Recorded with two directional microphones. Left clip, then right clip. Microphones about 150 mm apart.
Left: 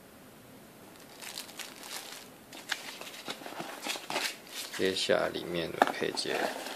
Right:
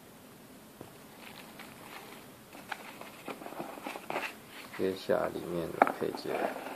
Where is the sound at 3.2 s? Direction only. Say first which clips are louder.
Even; 15° left (ahead or behind).